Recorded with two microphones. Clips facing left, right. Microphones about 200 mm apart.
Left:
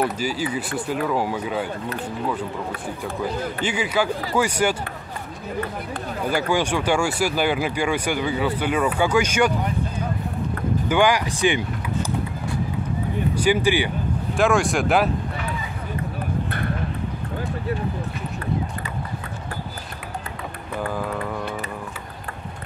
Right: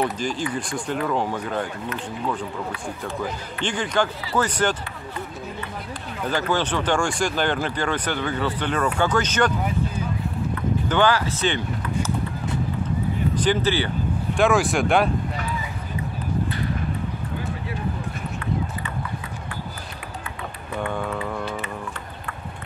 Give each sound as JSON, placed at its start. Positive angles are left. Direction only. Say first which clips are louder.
{"t": 0.0, "sound": "speech", "louder": "left 1 dB", "side_deg": 5}
{"t": 3.6, "sound": "speech", "louder": "even", "side_deg": 5}
{"t": 6.2, "sound": "speech", "louder": "left 1 dB", "side_deg": 10}
{"t": 10.9, "sound": "speech", "louder": "left 1 dB", "side_deg": 15}
{"t": 13.3, "sound": "speech", "louder": "left 3 dB", "side_deg": 10}
{"t": 14.3, "sound": "speech", "louder": "even", "side_deg": 0}
{"t": 16.4, "sound": "clip-clop", "louder": "even", "side_deg": 60}
{"t": 20.9, "sound": "mantra", "louder": "left 1 dB", "side_deg": 0}